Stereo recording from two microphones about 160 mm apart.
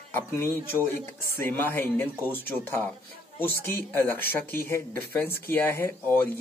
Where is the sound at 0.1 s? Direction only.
15° left (ahead or behind).